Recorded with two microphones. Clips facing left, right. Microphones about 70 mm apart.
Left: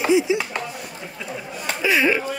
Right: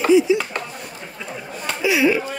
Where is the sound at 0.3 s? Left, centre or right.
Left.